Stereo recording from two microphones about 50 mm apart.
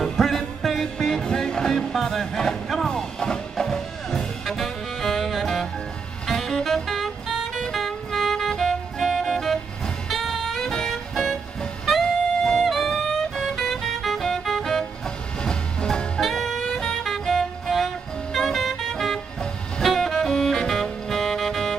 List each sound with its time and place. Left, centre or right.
0.0 s music: centre
7.6 s saxophone: centre
10.0 s music: centre
16.2 s saxophone: centre
19.8 s music: centre
20.2 s saxophone: centre